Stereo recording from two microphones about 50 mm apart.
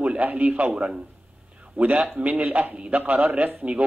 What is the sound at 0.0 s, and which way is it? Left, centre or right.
Speech, right.